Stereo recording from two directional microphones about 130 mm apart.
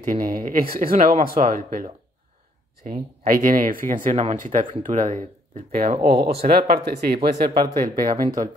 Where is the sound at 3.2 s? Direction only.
90° right.